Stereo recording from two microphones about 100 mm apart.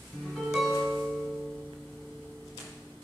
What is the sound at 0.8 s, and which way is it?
Music, 20° right (ahead or behind).